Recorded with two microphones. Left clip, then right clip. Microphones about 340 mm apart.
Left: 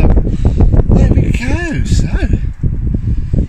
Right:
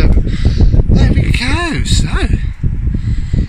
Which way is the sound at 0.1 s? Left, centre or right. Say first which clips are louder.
Left 2 dB; left.